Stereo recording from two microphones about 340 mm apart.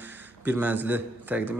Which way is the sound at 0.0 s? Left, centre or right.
Centre.